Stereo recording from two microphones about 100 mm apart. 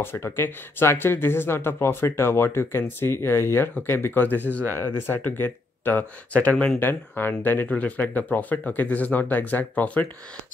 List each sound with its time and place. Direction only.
0.0 s speech: 25° left (ahead or behind)